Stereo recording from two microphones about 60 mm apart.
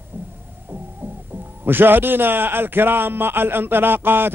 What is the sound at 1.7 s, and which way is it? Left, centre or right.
A man's voice, right.